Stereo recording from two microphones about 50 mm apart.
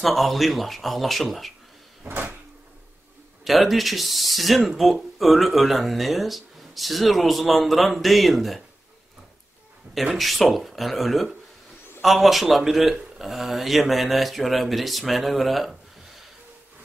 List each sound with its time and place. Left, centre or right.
0.0 s speech: centre
2.0 s cupboard open or close: right
3.4 s speech: centre
9.9 s speech: centre